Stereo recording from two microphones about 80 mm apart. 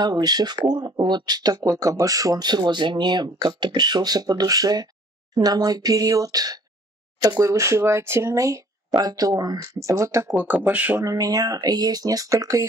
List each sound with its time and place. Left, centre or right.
0.0 s speech: right
8.9 s speech: right
10.2 s speech: right
11.0 s speech: right